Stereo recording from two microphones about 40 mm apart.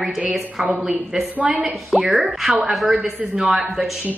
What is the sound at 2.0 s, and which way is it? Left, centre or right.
Speech, centre.